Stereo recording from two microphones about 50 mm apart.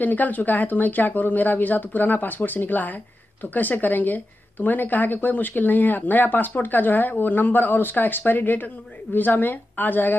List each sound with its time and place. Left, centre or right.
0.0 s a woman's voice: left